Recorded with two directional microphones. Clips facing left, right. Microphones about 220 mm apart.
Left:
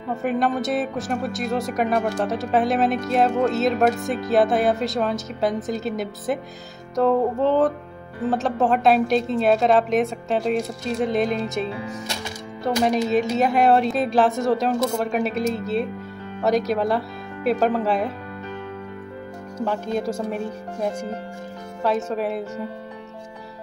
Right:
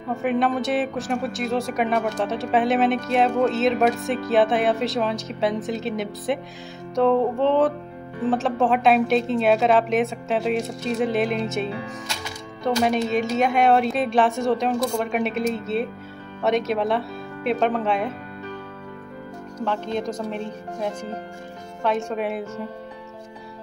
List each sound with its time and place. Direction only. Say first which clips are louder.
0.1 s a woman's voice: right 1 dB; centre (ahead or behind)
12.8 s a woman's voice: left 3 dB; centre (ahead or behind)
19.6 s speech: left 2 dB; 10° left (ahead or behind)
21.8 s a woman's voice: left 1 dB; 5° left (ahead or behind)